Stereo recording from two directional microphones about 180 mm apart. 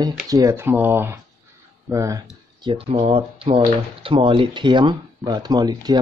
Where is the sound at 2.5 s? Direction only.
25° right (ahead or behind).